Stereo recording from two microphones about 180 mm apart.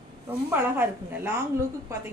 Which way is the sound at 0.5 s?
10° right (ahead or behind).